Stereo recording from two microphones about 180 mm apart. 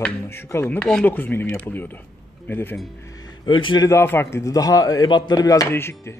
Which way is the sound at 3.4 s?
25° left (ahead or behind).